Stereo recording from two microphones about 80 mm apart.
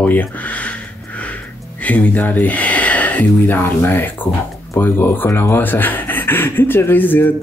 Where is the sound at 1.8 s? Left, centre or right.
Centre.